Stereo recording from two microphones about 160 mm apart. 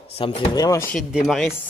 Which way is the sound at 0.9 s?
Centre (ahead or behind).